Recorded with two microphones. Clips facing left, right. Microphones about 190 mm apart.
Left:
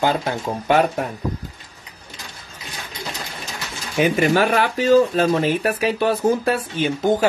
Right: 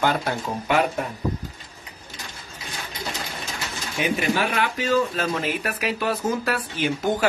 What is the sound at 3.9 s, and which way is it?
Speech, 45° left (ahead or behind).